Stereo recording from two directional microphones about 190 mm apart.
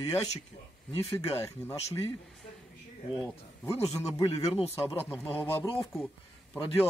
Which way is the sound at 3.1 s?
15° left (ahead or behind).